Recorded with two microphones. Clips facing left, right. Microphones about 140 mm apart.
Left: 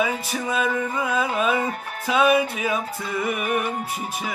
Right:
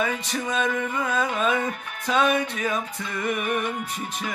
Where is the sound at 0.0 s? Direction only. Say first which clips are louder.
Left 2 dB; 5° left (ahead or behind).